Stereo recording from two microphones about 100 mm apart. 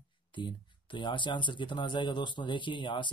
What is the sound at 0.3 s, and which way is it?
Speech, 55° left (ahead or behind).